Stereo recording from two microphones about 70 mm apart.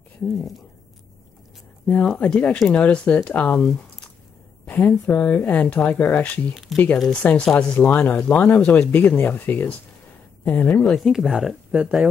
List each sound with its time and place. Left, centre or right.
1.9 s speech: centre
6.7 s speech: centre
7.1 s speech: centre
7.7 s speech: left
11.0 s speech: centre
11.7 s speech: centre